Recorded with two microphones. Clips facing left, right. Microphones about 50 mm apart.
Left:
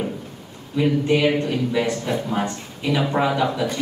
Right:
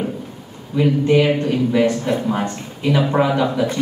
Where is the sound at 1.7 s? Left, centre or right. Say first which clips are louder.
Right 5 dB; centre.